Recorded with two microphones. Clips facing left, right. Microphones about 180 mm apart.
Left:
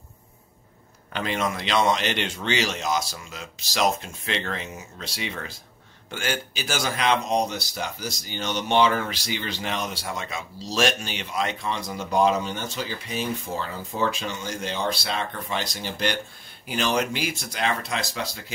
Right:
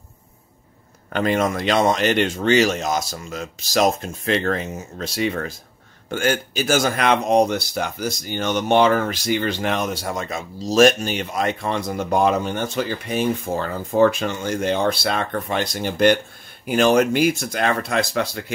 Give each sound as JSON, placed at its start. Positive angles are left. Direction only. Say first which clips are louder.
{"t": 1.1, "sound": "speech", "louder": "right 7 dB", "side_deg": -50}